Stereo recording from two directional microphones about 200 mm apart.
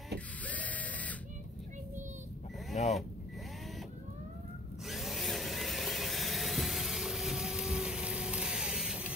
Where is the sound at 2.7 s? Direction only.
35° left (ahead or behind).